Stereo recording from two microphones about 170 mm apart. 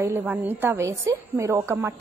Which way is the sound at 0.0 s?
10° right (ahead or behind).